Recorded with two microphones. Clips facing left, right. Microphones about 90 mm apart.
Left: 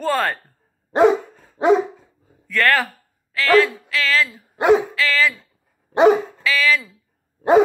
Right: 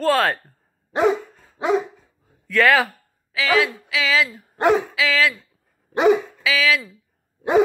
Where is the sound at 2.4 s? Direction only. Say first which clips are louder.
Right 2 dB; 5° right (ahead or behind).